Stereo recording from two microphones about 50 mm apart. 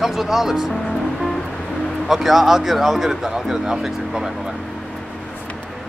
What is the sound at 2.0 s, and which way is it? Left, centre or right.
Speech, centre.